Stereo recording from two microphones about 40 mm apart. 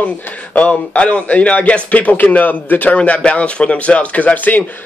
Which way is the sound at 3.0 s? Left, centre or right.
Left.